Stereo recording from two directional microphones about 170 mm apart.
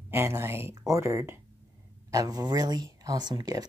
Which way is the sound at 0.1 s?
15° right (ahead or behind).